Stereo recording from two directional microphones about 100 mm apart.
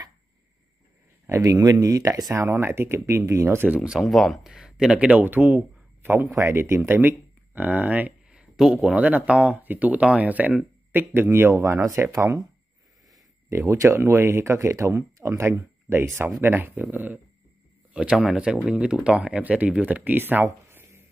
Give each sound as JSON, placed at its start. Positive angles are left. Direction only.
{"t": 1.2, "sound": "speech", "side_deg": -30}
{"t": 2.4, "sound": "speech", "side_deg": -25}
{"t": 3.6, "sound": "speech", "side_deg": -10}
{"t": 4.0, "sound": "speech", "side_deg": 0}
{"t": 13.5, "sound": "speech", "side_deg": -30}